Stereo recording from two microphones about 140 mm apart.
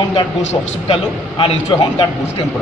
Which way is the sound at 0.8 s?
35° left (ahead or behind).